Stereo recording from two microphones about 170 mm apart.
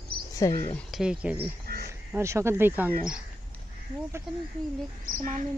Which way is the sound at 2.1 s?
15° right (ahead or behind).